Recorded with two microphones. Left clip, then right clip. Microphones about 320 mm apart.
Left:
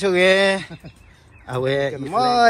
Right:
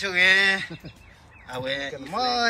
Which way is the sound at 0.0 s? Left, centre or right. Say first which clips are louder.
Left 3 dB; centre.